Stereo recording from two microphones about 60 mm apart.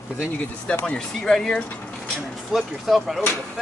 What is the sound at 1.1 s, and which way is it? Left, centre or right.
Speech, centre.